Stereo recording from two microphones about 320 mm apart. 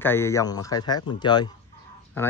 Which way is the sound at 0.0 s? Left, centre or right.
Centre.